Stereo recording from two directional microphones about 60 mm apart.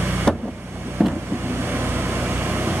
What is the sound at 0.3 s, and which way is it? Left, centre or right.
Vehicle, centre.